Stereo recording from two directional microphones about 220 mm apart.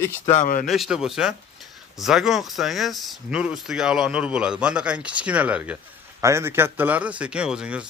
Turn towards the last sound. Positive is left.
turn(degrees=-5)  # may be behind; listen again after turning